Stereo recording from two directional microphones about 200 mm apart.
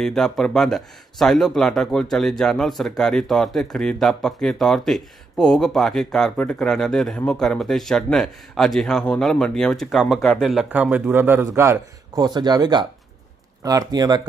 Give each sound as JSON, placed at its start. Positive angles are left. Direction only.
{"t": 0.0, "sound": "speech", "side_deg": 0}